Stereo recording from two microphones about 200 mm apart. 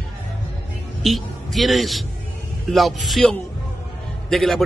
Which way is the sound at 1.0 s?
Centre (ahead or behind).